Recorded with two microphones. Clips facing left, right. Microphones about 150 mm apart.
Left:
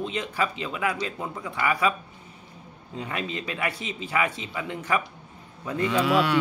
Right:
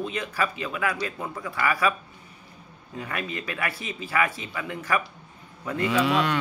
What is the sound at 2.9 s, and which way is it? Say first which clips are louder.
Speech: left 1 dB; 20° left (ahead or behind).